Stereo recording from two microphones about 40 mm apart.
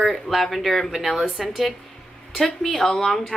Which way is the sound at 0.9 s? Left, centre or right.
Centre.